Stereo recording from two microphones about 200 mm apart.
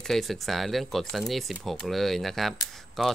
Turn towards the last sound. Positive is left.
turn(degrees=0)  # may be behind; listen again after turning